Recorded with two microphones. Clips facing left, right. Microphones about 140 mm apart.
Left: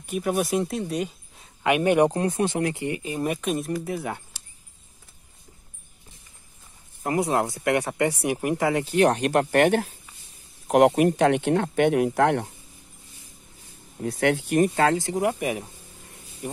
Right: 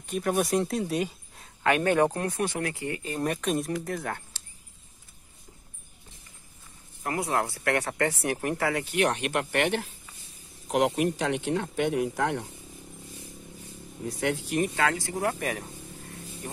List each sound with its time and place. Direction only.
0.0 s speech: 5° left (ahead or behind)
1.6 s speech: 15° left (ahead or behind)
3.2 s speech: 5° left (ahead or behind)
7.0 s speech: 20° left (ahead or behind)
8.9 s speech: 35° left (ahead or behind); by 12.4 s 70° left (ahead or behind)
14.0 s speech: 70° left (ahead or behind)
14.6 s speech: 35° left (ahead or behind)
15.0 s speech: 20° left (ahead or behind)